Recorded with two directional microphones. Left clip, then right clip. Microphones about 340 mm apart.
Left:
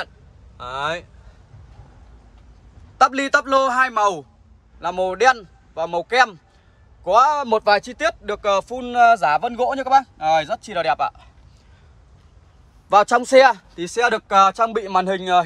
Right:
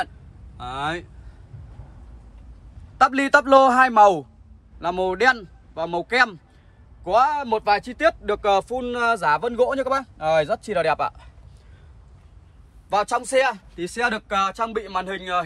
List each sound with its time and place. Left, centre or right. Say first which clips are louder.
0.6 s speech: left 2 dB; centre
3.0 s speech: even; centre
12.9 s speech: left 7 dB; left